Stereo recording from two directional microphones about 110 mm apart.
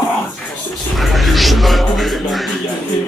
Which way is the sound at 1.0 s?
Centre (ahead or behind).